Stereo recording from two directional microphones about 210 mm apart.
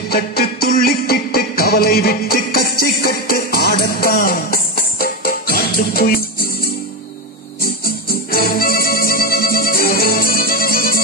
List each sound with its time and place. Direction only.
0.1 s music: 45° left (ahead or behind)